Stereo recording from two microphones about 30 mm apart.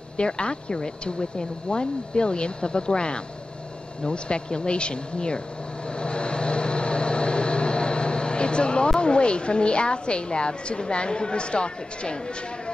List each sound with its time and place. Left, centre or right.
0.2 s a woman's voice: left
5.9 s vehicle: left
9.0 s a woman's voice: left